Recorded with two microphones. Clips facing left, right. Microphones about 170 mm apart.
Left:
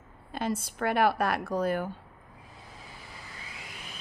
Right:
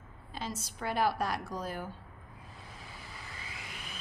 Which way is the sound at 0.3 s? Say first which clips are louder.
Left 8 dB; 55° left (ahead or behind).